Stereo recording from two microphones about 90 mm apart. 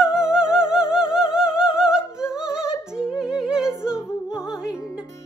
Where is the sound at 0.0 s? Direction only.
10° right (ahead or behind).